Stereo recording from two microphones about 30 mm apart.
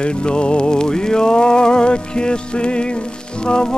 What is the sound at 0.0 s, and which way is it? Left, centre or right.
Music, left.